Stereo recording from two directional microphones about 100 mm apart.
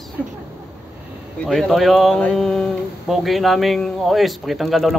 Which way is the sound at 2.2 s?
5° left (ahead or behind).